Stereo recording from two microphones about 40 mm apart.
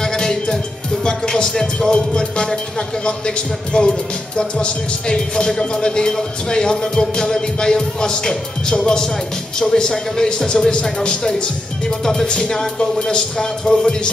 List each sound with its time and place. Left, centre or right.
0.0 s music: centre
1.0 s speech: centre